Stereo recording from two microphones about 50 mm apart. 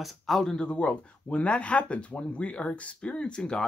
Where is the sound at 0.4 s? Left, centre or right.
Centre.